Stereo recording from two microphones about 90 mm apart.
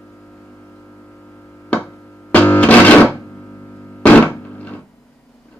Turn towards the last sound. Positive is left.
turn(degrees=15)  # may be behind; listen again after turning